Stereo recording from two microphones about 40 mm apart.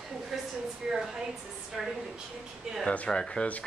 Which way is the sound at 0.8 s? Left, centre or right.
Centre.